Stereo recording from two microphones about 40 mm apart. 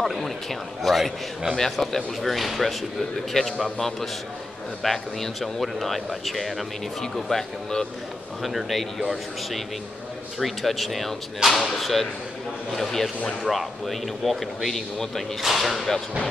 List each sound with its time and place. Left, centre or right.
0.0 s a man's voice: centre
3.4 s speech: centre
4.8 s a man's voice: centre
10.4 s a man's voice: centre